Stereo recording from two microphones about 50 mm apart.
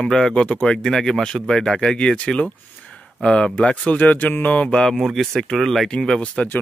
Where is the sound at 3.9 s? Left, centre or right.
Left.